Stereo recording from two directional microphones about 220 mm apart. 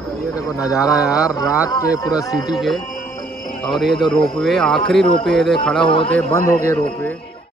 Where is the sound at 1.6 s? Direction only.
15° left (ahead or behind).